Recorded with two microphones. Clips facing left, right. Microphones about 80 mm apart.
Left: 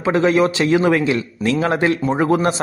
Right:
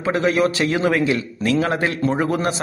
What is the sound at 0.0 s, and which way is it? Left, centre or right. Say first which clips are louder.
A man's voice: left 3 dB; left.